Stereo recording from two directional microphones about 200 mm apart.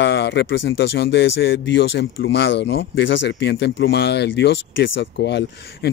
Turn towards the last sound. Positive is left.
turn(degrees=60)  # may be behind; listen again after turning